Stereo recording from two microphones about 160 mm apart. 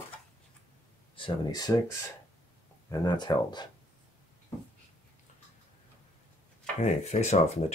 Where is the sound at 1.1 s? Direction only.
25° left (ahead or behind).